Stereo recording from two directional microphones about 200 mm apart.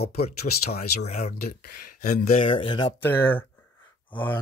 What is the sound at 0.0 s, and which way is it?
Speech, 50° left (ahead or behind).